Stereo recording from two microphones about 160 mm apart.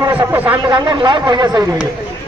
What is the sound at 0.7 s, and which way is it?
Speech, 30° right (ahead or behind).